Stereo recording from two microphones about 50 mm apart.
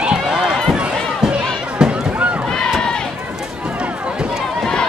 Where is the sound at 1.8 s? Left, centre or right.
Centre.